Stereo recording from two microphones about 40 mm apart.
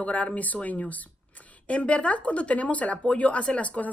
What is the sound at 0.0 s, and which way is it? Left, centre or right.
Speech, left.